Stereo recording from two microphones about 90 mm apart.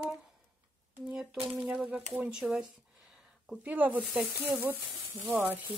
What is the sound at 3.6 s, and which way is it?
Speech, 20° right (ahead or behind).